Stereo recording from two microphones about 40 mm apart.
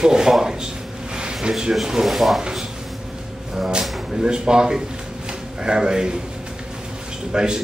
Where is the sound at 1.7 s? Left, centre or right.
Centre.